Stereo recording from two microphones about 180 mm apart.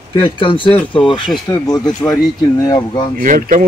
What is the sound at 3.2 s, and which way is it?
Speech, 50° right (ahead or behind).